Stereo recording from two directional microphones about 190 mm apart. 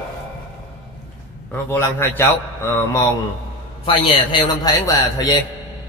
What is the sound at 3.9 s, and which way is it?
A man's voice, 30° left (ahead or behind).